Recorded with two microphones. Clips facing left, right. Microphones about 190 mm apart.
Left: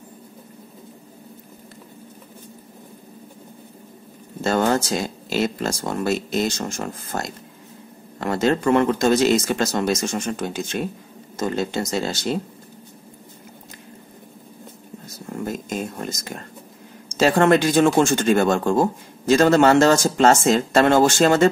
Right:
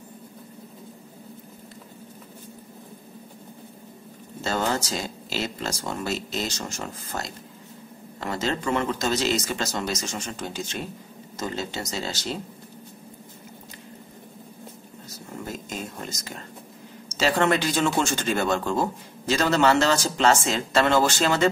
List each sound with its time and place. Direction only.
4.4 s speech: 55° left (ahead or behind)
15.4 s a sound: 50° left (ahead or behind)
17.1 s speech: 50° left (ahead or behind)